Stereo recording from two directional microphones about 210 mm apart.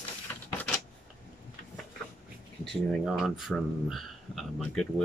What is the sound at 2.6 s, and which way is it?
Speech, centre (ahead or behind).